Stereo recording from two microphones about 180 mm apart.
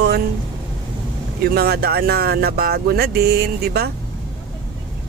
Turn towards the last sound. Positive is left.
turn(degrees=-60)  # may be behind; listen again after turning